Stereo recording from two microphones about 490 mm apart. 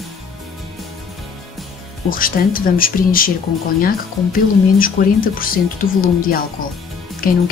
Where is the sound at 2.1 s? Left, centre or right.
Centre.